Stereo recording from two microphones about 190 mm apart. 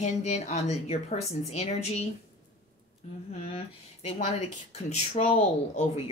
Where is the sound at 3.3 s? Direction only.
30° left (ahead or behind).